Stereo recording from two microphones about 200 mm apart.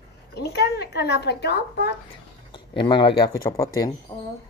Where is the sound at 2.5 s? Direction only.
25° left (ahead or behind).